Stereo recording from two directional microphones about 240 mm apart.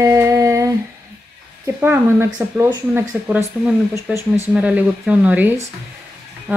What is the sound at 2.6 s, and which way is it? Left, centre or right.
A woman's voice, centre.